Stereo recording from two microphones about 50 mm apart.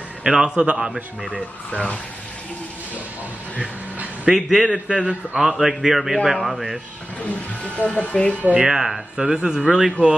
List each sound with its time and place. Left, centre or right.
0.2 s speech: centre
1.7 s speech: left
4.3 s speech: centre
4.7 s a man's voice: centre
5.4 s a man's voice: centre
7.2 s speech: left
8.5 s speech: centre